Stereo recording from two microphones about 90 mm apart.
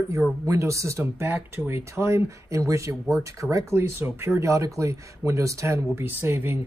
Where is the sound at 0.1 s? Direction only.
35° right (ahead or behind).